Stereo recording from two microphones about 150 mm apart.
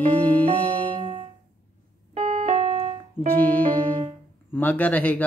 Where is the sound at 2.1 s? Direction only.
45° right (ahead or behind).